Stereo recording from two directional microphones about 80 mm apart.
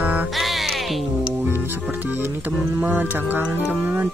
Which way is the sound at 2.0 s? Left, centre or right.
Right.